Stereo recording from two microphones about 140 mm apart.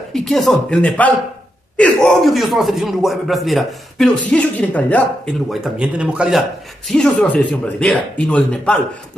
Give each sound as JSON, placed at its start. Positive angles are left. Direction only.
{"t": 0.1, "sound": "a man's voice", "side_deg": 0}
{"t": 2.0, "sound": "a man's voice", "side_deg": 0}
{"t": 5.6, "sound": "speech", "side_deg": -10}
{"t": 6.9, "sound": "speech", "side_deg": 5}